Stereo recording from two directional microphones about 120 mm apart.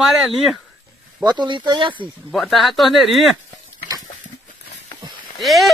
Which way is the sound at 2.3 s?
Centre (ahead or behind).